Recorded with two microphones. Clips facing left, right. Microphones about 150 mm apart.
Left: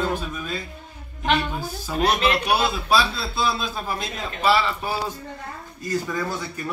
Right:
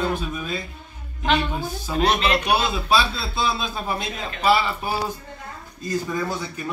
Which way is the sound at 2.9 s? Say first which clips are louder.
Right 2 dB; centre (ahead or behind).